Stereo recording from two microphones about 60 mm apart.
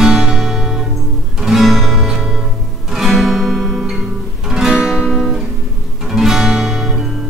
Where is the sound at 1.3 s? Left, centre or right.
Centre.